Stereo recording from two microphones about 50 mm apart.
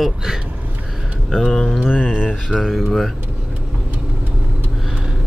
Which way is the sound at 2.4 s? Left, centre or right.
Centre.